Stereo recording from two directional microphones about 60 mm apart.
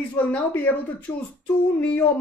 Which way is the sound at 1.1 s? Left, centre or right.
Left.